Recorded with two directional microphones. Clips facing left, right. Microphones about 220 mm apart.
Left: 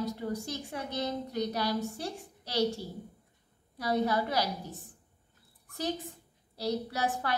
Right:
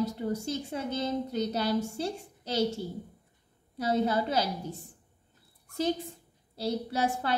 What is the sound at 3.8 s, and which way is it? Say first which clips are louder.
Speech: right 2 dB; 25° right (ahead or behind).